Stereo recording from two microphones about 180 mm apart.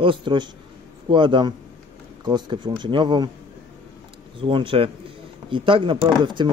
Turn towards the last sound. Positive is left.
turn(degrees=-25)  # may be behind; listen again after turning